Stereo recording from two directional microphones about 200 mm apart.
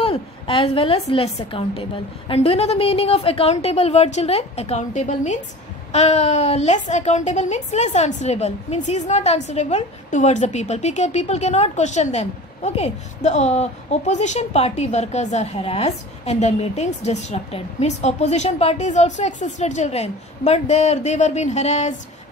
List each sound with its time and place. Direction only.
0.0 s a woman's voice: 25° left (ahead or behind)